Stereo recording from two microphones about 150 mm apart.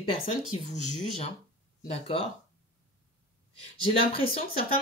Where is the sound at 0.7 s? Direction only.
50° left (ahead or behind).